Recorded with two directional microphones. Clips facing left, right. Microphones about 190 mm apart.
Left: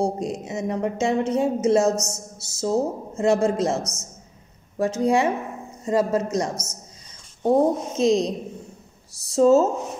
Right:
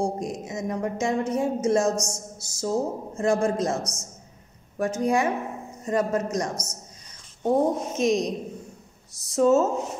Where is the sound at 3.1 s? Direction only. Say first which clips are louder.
Left 3 dB; 25° left (ahead or behind).